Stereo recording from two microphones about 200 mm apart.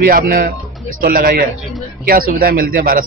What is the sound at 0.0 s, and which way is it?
A man's voice, 45° right (ahead or behind).